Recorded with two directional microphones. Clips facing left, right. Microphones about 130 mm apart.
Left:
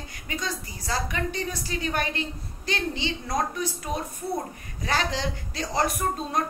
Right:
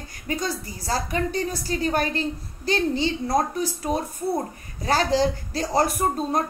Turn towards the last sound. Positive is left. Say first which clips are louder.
# right 4 dB
turn(degrees=-40)  # may be behind; listen again after turning